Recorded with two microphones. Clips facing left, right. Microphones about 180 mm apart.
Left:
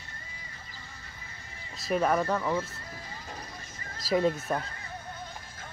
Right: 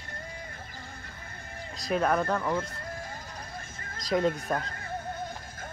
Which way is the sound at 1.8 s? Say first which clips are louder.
Even; 5° left (ahead or behind).